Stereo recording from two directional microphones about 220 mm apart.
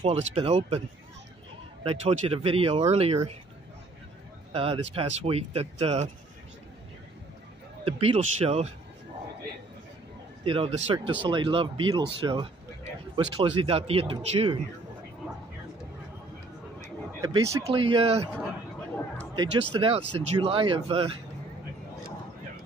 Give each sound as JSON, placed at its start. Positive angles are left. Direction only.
{"t": 0.0, "sound": "speech", "side_deg": -30}
{"t": 4.5, "sound": "speech", "side_deg": -25}
{"t": 7.8, "sound": "speech", "side_deg": -25}
{"t": 10.4, "sound": "speech", "side_deg": -25}
{"t": 17.2, "sound": "speech", "side_deg": -15}
{"t": 19.1, "sound": "a sound", "side_deg": -20}
{"t": 19.7, "sound": "speech", "side_deg": -25}